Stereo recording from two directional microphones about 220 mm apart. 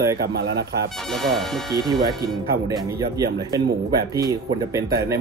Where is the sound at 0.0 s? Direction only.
15° right (ahead or behind).